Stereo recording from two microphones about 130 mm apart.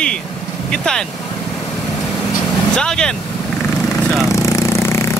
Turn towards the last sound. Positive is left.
turn(degrees=20)  # may be behind; listen again after turning